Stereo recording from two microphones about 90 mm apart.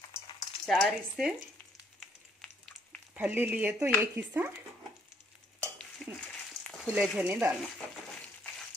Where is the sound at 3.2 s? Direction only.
20° right (ahead or behind).